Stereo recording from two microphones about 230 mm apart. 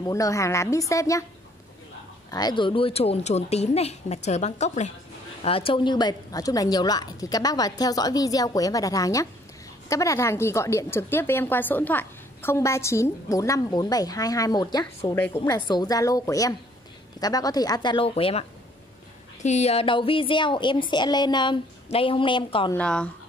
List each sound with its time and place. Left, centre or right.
0.0 s a woman's voice: centre
2.3 s a woman's voice: centre
19.4 s a woman's voice: left
22.8 s a woman's voice: centre